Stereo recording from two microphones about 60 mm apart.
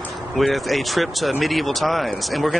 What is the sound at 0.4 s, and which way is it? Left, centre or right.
Speech, centre.